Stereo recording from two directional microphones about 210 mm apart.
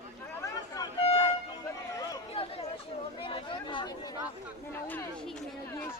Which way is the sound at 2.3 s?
30° left (ahead or behind).